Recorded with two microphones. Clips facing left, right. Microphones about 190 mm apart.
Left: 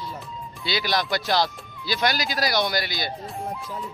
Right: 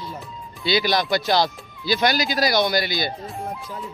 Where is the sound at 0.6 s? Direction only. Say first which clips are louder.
Right 5 dB; centre (ahead or behind).